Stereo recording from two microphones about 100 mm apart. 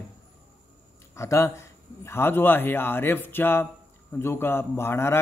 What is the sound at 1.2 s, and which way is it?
A man's voice, 30° left (ahead or behind).